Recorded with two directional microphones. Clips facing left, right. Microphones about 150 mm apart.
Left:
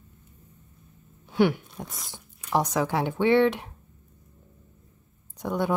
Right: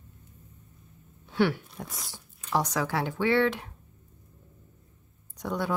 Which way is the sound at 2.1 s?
20° left (ahead or behind).